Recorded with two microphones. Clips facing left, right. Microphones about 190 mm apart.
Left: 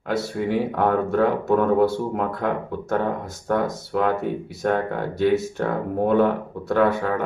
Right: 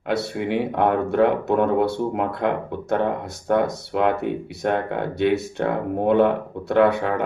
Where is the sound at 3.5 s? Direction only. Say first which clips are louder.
Right 2 dB; 65° right (ahead or behind).